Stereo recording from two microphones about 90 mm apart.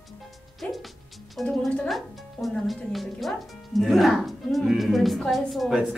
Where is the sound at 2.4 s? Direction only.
Centre (ahead or behind).